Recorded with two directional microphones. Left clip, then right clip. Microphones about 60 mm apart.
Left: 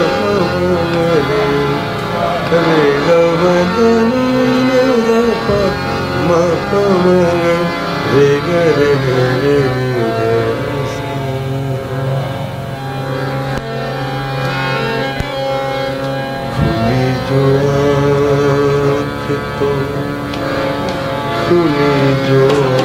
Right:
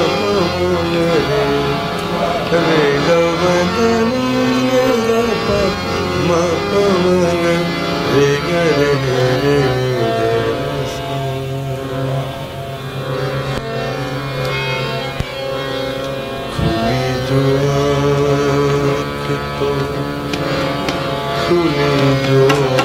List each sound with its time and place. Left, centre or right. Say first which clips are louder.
0.0 s music: left 2 dB; left
0.6 s music: left 2 dB; left
2.1 s a sound: left 2 dB; left
3.0 s music: left 3 dB; left
4.4 s music: left 2 dB; left
5.2 s music: left 2 dB; left
8.6 s music: left 3 dB; centre
9.1 s music: left 1 dB; left
9.4 s music: left 2 dB; left
10.0 s music: left 2 dB; left
16.6 s music: left 1 dB; left
17.8 s music: left 3 dB; left
21.4 s music: left 3 dB; left
22.0 s carnatic music: left 1 dB; left